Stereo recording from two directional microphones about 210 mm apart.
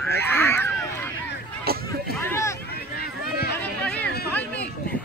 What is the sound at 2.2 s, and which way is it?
Hubbub, 15° left (ahead or behind).